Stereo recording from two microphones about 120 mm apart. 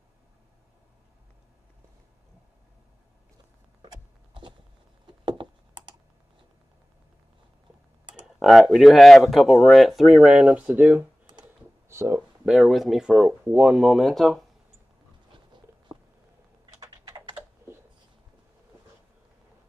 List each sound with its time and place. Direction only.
3.8 s a sound: 40° right (ahead or behind)
8.0 s computer keyboard: 40° right (ahead or behind)
8.4 s speech: centre (ahead or behind); by 12.3 s 20° right (ahead or behind)
12.4 s speech: centre (ahead or behind)
16.8 s typing: 30° right (ahead or behind)